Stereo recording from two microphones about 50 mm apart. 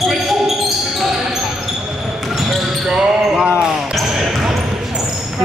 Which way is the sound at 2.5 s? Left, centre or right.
Centre.